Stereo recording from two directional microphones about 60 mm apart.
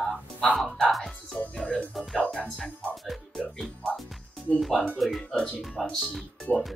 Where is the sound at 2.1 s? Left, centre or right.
Centre.